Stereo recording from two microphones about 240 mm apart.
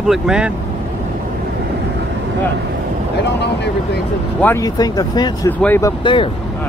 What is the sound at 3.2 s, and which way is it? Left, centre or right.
Speech, left.